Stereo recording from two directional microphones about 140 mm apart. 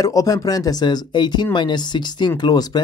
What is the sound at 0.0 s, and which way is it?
Speech, 25° left (ahead or behind).